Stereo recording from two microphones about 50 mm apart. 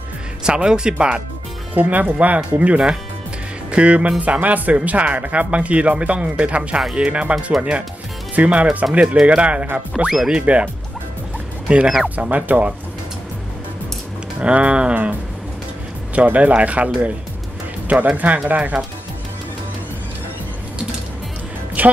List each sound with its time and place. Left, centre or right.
0.4 s speech: centre
1.7 s speech: right
8.4 s speech: right
10.0 s speech: centre
10.3 s speech: right
11.7 s speech: right
14.4 s speech: right
16.2 s speech: right
21.8 s music: right